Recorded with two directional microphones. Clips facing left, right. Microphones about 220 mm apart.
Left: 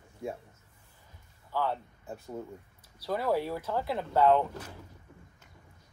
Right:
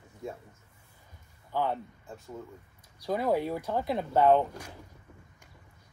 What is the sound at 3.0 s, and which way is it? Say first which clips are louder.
Speech: right 2 dB; 15° right (ahead or behind).